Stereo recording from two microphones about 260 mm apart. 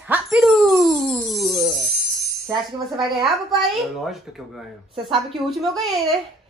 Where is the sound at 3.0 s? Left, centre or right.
Centre.